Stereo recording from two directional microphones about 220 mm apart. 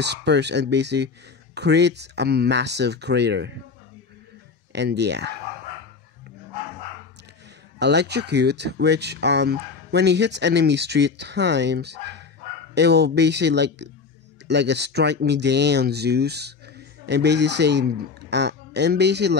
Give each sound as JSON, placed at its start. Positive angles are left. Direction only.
{"t": 0.0, "sound": "speech", "side_deg": -50}
{"t": 4.7, "sound": "speech", "side_deg": -50}
{"t": 7.8, "sound": "speech", "side_deg": -50}